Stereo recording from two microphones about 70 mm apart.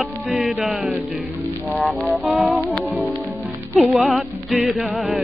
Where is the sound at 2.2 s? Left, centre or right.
Right.